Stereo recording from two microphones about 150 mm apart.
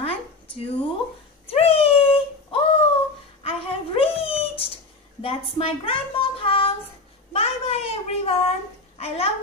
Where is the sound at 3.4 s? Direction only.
40° left (ahead or behind).